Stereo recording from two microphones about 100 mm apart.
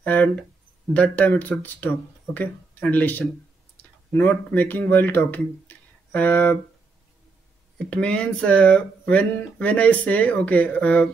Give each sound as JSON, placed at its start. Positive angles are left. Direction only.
{"t": 0.0, "sound": "speech", "side_deg": 15}
{"t": 7.8, "sound": "speech", "side_deg": 10}